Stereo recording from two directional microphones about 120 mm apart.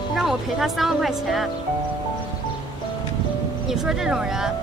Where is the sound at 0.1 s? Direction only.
Centre (ahead or behind).